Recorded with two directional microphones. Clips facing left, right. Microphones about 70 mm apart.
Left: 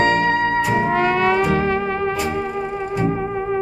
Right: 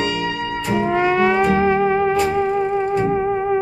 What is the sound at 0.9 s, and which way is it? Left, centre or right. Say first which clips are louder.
Music: right 4 dB; centre.